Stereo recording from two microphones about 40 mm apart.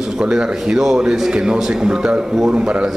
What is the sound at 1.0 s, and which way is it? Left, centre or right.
A man's voice, centre.